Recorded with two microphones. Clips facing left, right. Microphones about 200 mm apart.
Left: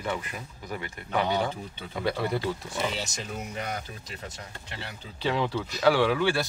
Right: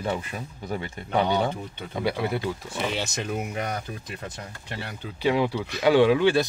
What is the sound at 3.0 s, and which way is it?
Speech, 60° right (ahead or behind).